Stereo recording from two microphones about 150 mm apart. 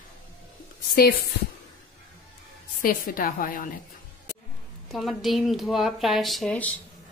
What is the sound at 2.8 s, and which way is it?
Speech, 70° left (ahead or behind).